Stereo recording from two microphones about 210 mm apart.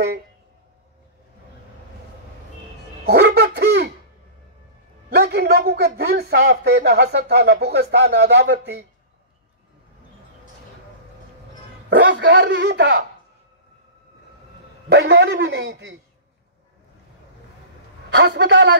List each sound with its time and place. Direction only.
3.1 s baby laughter: 55° right (ahead or behind)
5.1 s a man's voice: 50° right (ahead or behind)
11.9 s a man's voice: 55° right (ahead or behind)
14.9 s a man's voice: 60° right (ahead or behind)
18.1 s a man's voice: 55° right (ahead or behind)